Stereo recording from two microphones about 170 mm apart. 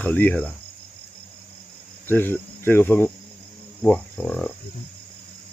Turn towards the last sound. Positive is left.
turn(degrees=5)  # may be behind; listen again after turning